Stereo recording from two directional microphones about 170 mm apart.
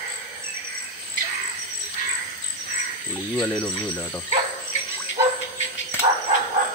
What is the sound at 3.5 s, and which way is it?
Speech, 10° left (ahead or behind).